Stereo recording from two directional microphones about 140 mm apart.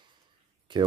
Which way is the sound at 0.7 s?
35° right (ahead or behind).